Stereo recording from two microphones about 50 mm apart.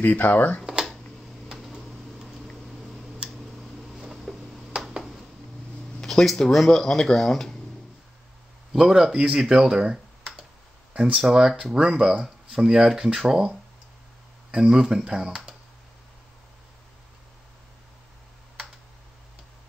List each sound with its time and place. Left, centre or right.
0.1 s speech: left
3.2 s tick: centre
4.0 s a sound: centre
5.9 s a sound: centre
6.5 s speech: centre
8.7 s speech: centre